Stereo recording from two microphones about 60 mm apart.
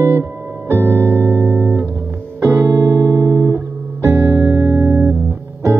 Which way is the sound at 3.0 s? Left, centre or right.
Right.